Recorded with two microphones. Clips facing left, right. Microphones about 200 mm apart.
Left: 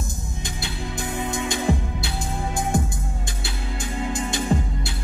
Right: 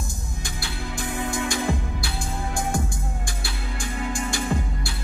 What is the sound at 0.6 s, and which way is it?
Music, 20° left (ahead or behind).